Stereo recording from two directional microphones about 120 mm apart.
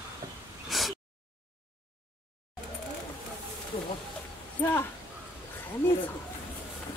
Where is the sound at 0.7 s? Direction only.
Centre (ahead or behind).